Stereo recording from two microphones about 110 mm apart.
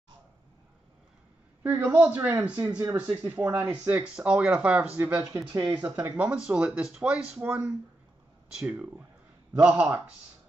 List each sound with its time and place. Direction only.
1.6 s speech: 15° right (ahead or behind)
5.3 s speech: 30° right (ahead or behind)
5.7 s speech: 15° right (ahead or behind)
8.7 s speech: 15° right (ahead or behind)